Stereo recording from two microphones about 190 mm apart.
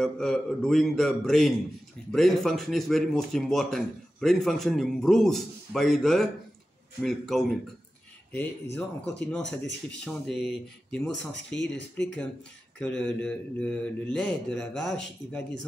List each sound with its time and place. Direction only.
0.0 s a man's voice: centre (ahead or behind)
8.3 s speech: 55° left (ahead or behind)
8.7 s a man's voice: 5° left (ahead or behind)
12.7 s a man's voice: 5° left (ahead or behind)